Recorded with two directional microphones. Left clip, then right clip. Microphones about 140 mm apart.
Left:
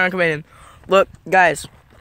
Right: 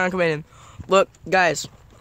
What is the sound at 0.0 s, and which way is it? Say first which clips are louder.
Speech: left 3 dB; 5° left (ahead or behind).